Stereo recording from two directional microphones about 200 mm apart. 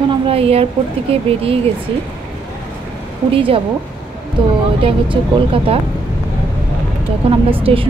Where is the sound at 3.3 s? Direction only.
25° right (ahead or behind).